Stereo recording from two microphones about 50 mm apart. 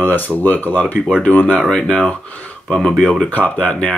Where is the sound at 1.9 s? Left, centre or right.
Left.